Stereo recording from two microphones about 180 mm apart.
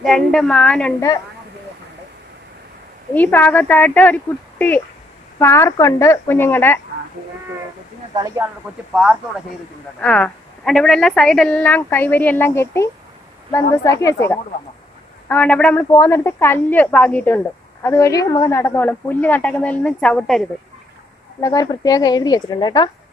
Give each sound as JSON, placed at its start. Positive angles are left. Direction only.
{"t": 0.0, "sound": "a woman's voice", "side_deg": 5}
{"t": 3.2, "sound": "a woman's voice", "side_deg": 10}
{"t": 8.1, "sound": "speech", "side_deg": -20}
{"t": 8.9, "sound": "a woman's voice", "side_deg": -5}
{"t": 9.9, "sound": "a woman's voice", "side_deg": 5}
{"t": 21.4, "sound": "speech", "side_deg": 20}